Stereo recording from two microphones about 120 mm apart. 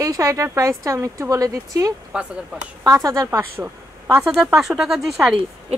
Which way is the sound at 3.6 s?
20° right (ahead or behind).